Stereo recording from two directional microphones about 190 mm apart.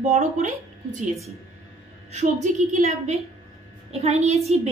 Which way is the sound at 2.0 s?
40° right (ahead or behind).